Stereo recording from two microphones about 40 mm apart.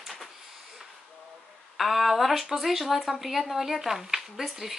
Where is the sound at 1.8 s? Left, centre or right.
Centre.